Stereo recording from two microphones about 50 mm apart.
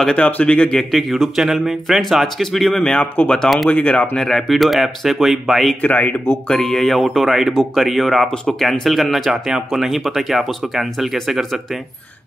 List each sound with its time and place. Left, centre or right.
0.1 s speech: left
0.9 s speech: centre
3.7 s speech: left
4.3 s speech: centre
5.8 s speech: left
6.4 s speech: centre